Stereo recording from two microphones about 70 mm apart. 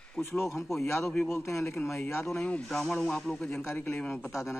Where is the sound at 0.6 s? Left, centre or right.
Centre.